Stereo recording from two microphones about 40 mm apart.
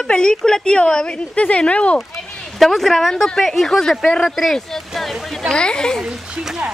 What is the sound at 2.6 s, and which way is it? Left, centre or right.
Speech, centre.